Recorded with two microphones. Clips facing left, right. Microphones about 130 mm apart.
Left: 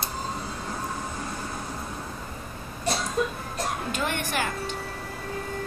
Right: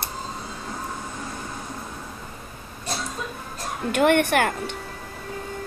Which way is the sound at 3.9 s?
60° right (ahead or behind).